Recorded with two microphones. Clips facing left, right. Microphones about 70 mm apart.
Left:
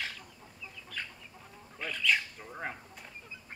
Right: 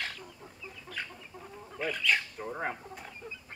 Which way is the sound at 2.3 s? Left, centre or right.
Right.